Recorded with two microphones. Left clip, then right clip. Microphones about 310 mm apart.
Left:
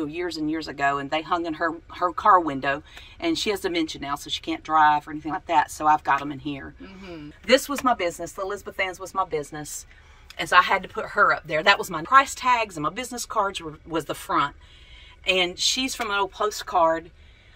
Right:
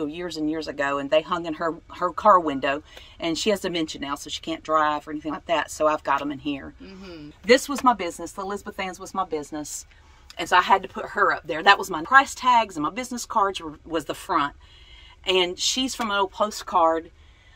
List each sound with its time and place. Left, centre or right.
0.1 s speech: right
7.7 s speech: right
10.3 s speech: right